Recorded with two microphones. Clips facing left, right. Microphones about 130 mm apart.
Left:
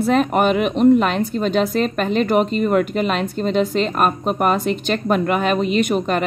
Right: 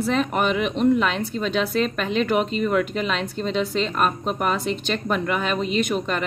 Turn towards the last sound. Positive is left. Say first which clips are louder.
# left 5 dB
turn(degrees=50)  # may be behind; listen again after turning